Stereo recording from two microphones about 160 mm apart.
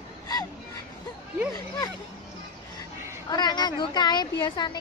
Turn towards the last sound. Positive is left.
turn(degrees=25)  # may be behind; listen again after turning